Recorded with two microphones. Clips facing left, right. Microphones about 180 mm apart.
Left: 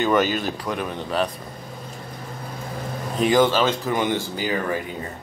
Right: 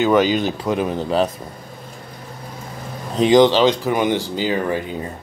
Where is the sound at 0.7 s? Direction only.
30° right (ahead or behind).